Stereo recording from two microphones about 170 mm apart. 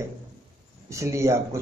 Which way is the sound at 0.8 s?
15° right (ahead or behind).